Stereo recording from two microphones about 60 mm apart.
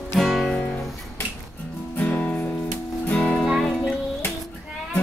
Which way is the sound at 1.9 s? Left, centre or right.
Left.